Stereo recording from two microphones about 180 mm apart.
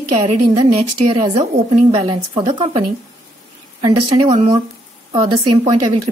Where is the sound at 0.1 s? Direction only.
40° right (ahead or behind).